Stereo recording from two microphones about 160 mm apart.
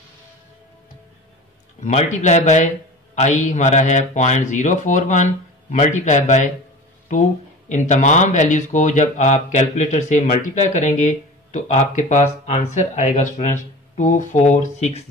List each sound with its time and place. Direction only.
1.8 s speech: 45° left (ahead or behind)